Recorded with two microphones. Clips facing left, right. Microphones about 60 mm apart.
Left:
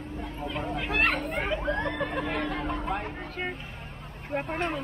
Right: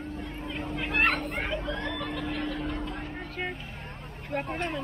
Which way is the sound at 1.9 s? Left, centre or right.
Left.